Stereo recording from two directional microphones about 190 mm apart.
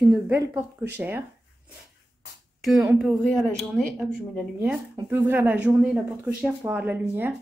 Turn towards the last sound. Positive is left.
turn(degrees=-10)  # may be behind; listen again after turning